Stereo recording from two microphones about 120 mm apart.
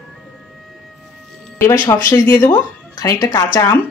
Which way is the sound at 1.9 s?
30° left (ahead or behind).